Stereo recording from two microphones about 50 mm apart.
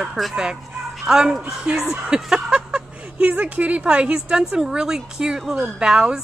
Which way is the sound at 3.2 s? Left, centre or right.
Right.